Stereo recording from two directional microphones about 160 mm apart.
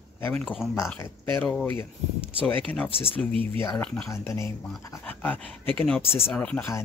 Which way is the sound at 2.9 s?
35° left (ahead or behind).